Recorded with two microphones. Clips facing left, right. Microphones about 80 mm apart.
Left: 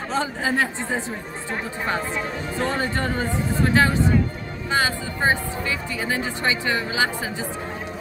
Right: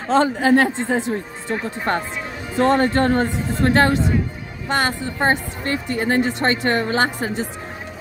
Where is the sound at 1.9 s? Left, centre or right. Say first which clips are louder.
Right 2 dB; right.